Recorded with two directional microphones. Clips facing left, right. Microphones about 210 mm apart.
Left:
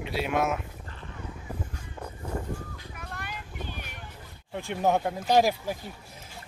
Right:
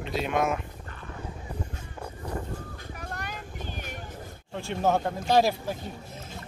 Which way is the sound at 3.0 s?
45° right (ahead or behind).